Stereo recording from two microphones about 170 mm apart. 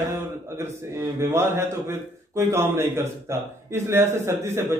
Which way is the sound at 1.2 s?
15° right (ahead or behind).